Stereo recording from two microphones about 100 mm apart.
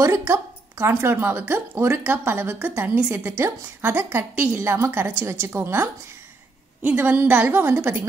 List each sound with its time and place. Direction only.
0.0 s a woman's voice: 25° right (ahead or behind)